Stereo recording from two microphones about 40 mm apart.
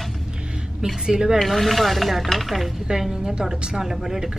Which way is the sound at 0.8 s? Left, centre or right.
Centre.